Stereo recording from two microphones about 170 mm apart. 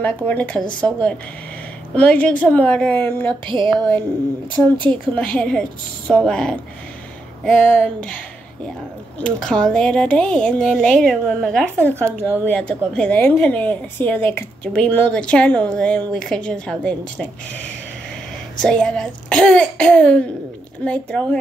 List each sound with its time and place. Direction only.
0.0 s a woman's voice: 10° left (ahead or behind)
4.5 s speech: 30° right (ahead or behind)
5.1 s a woman's voice: 5° left (ahead or behind)
9.2 s a woman's voice: 5° left (ahead or behind)